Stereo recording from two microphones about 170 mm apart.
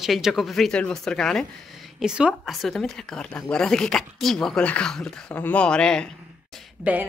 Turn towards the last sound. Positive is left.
turn(degrees=-10)  # may be behind; listen again after turning